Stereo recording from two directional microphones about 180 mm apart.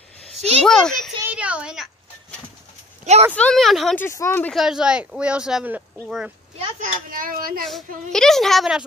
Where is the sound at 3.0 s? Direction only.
40° right (ahead or behind).